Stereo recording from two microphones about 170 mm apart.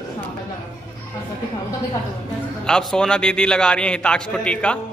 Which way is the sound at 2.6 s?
5° left (ahead or behind).